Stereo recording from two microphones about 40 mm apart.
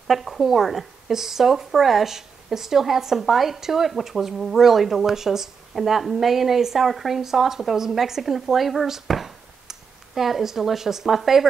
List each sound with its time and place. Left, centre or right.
0.1 s speech: centre